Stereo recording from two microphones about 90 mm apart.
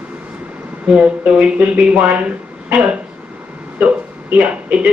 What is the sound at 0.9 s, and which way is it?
A man's voice, 15° right (ahead or behind).